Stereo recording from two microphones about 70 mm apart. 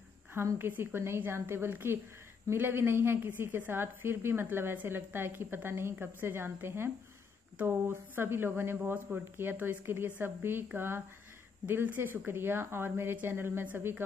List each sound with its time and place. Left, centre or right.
0.3 s a woman's voice: right